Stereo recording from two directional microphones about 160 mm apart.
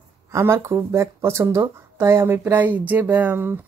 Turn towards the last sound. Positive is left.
turn(degrees=-15)  # may be behind; listen again after turning